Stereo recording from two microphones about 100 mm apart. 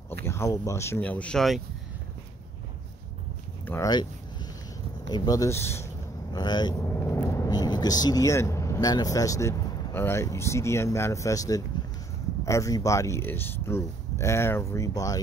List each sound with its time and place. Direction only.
0.2 s speech: 25° left (ahead or behind)
1.0 s speech: 15° left (ahead or behind)
3.8 s speech: 45° left (ahead or behind); by 5.9 s 25° left (ahead or behind)
6.3 s speech: 45° left (ahead or behind)
6.7 s vehicle: 25° left (ahead or behind)
7.5 s speech: 40° left (ahead or behind)